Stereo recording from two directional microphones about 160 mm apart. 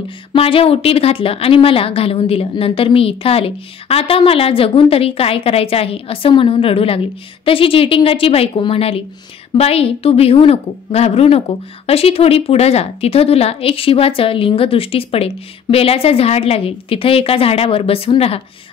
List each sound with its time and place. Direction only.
0.3 s a woman's voice: 35° left (ahead or behind)